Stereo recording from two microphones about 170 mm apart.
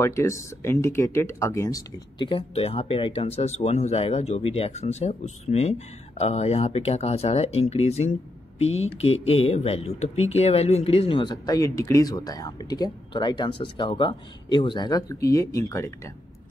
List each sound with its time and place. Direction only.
0.0 s speech: 15° left (ahead or behind)